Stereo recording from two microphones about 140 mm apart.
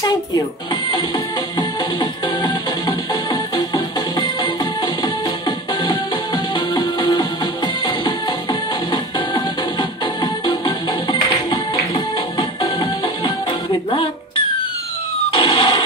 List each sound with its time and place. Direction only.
0.9 s music: 30° left (ahead or behind)
15.3 s music: 40° left (ahead or behind)